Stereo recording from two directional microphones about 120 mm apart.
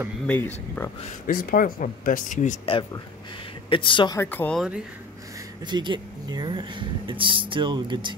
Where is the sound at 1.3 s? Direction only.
90° left.